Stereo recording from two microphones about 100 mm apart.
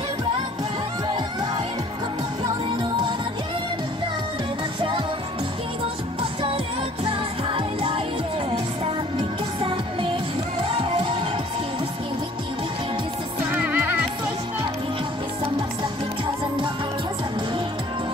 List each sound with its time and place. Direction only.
7.1 s music: 65° right (ahead or behind)
10.6 s music: 65° right (ahead or behind)
13.5 s music: 15° right (ahead or behind)